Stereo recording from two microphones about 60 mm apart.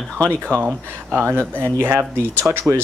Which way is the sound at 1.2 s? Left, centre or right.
Right.